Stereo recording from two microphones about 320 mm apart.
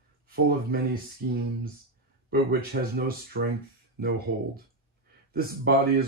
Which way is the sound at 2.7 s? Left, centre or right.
Right.